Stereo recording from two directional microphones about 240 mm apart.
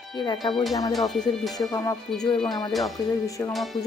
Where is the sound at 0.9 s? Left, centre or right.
Centre.